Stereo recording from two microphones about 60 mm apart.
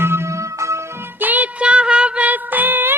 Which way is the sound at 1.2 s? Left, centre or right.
Right.